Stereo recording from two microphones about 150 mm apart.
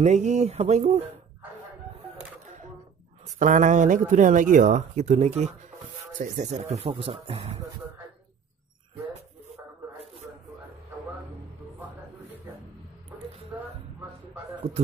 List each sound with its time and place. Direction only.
0.0 s speech: 50° right (ahead or behind)
3.3 s speech: 60° right (ahead or behind)
7.0 s speech: 40° right (ahead or behind)